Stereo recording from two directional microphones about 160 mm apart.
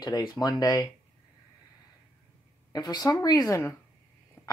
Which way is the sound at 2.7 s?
25° left (ahead or behind).